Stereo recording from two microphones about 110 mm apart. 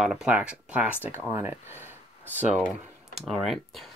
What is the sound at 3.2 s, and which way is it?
Speech, centre (ahead or behind).